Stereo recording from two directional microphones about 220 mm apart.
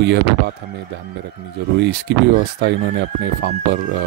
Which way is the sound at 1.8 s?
50° right (ahead or behind).